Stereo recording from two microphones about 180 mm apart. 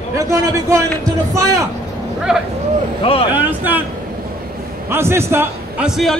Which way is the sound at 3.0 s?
30° left (ahead or behind).